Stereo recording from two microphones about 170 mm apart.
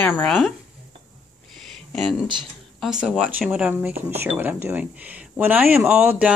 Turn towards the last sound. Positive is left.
turn(degrees=-5)  # may be behind; listen again after turning